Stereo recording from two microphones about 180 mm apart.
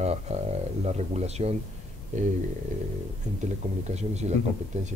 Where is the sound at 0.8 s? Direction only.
35° right (ahead or behind).